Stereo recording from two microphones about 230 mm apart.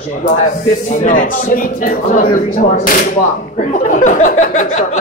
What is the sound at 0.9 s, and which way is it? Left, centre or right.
Speech, left.